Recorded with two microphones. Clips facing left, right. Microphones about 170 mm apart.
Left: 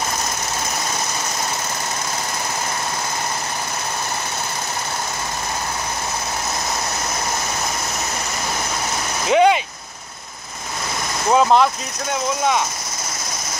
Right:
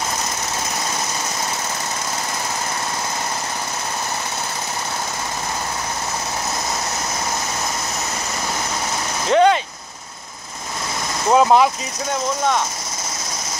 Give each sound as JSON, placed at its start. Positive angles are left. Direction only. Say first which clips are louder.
{"t": 9.3, "sound": "vehicle", "louder": "even", "side_deg": 10}
{"t": 11.2, "sound": "speech", "louder": "right 1 dB", "side_deg": -5}